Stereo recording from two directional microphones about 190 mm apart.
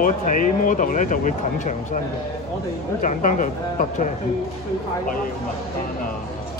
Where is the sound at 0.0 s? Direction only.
45° left (ahead or behind).